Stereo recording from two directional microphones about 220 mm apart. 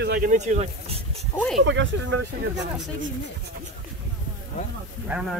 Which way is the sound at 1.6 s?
55° right (ahead or behind).